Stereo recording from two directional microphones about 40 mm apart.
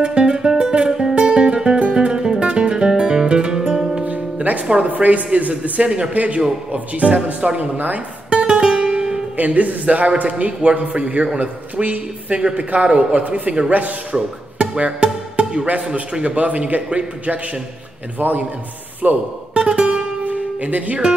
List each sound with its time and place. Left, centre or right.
0.0 s music: right
1.8 s music: right; by 4.0 s centre
4.0 s music: right
4.8 s speech: right
5.5 s a man's voice: right
8.3 s music: right
9.4 s speech: right
11.3 s speech: right
14.1 s music: right
15.8 s a man's voice: right
18.2 s a man's voice: right
19.5 s music: right
20.2 s music: right